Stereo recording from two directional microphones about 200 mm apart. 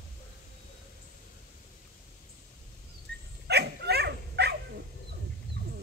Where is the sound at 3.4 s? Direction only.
55° right (ahead or behind).